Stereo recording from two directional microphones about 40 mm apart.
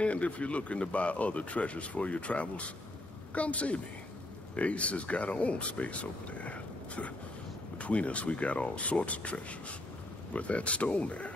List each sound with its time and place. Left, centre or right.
0.0 s speech: left